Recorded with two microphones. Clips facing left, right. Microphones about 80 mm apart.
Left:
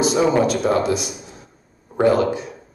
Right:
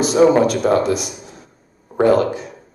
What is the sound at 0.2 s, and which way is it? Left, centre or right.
Speech, right.